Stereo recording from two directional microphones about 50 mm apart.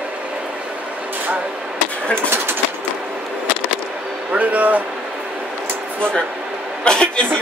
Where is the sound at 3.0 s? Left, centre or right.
Right.